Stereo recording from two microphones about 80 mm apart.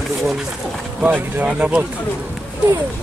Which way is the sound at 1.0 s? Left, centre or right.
Right.